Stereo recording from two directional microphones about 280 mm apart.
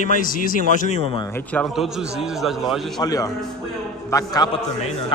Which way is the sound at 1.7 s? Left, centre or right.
Centre.